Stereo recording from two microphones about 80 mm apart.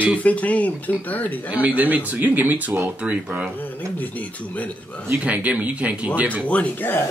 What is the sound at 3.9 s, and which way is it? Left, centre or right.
Speech, left.